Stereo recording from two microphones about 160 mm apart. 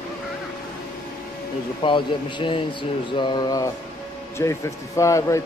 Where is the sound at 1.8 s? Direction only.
30° left (ahead or behind).